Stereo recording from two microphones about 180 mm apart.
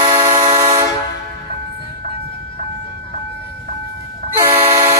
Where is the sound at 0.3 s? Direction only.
35° right (ahead or behind).